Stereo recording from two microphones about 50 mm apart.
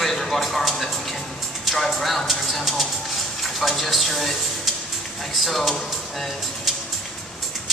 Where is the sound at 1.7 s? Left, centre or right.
Centre.